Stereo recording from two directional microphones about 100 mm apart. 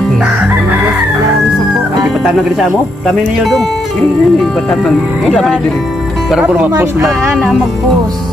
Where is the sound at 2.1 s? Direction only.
Centre (ahead or behind).